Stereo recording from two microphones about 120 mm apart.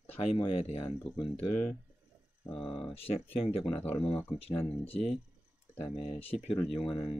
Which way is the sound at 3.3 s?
55° left (ahead or behind).